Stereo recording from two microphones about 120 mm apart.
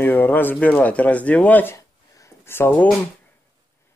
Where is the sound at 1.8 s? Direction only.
25° left (ahead or behind).